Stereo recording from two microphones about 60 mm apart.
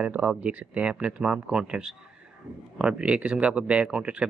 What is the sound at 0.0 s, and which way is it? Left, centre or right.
Speech, right.